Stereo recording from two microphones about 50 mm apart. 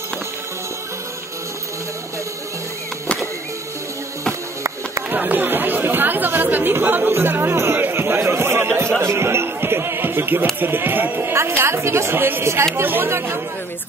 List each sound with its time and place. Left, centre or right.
4.3 s music: right
5.1 s speech: right
12.4 s speech: right
12.8 s speech: right